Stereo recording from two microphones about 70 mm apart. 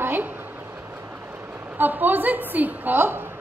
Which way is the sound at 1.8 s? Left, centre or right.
Right.